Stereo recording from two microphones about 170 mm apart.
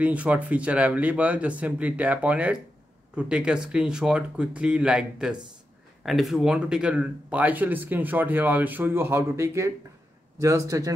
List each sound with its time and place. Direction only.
0.0 s a man's voice: 10° right (ahead or behind)